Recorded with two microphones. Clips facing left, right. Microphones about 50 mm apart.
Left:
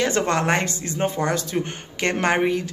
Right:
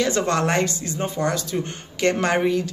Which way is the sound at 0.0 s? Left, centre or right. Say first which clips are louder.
Even; left.